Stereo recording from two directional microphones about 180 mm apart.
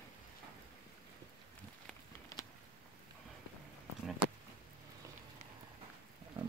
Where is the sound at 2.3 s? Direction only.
20° left (ahead or behind).